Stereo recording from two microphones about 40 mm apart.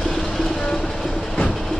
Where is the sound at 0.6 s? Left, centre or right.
Centre.